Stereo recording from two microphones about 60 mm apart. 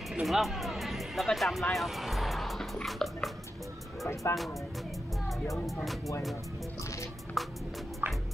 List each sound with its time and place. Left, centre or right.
0.1 s speech: centre
4.1 s speech: left
7.4 s music: centre
8.0 s music: right